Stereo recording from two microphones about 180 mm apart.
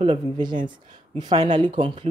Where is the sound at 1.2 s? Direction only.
25° right (ahead or behind).